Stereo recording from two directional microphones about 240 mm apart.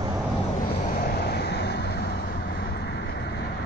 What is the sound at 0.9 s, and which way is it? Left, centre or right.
Vehicle, left.